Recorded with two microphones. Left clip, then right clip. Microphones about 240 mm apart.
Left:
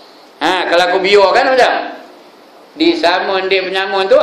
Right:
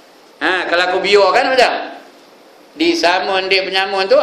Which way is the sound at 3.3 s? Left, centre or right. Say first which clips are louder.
Left 1 dB; centre.